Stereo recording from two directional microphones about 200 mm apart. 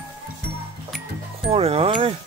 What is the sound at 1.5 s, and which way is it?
Speech, 30° right (ahead or behind).